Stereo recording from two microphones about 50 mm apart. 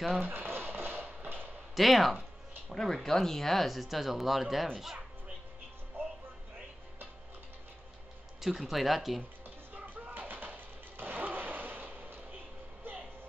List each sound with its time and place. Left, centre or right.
0.2 s a sound: right
1.8 s speech: centre
6.0 s music: right
8.4 s speech: centre
9.8 s music: right